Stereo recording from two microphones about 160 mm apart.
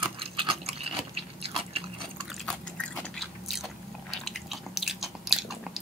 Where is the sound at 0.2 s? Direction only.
35° right (ahead or behind).